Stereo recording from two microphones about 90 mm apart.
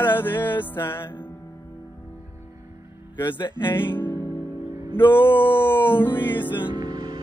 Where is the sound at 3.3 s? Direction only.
55° left (ahead or behind).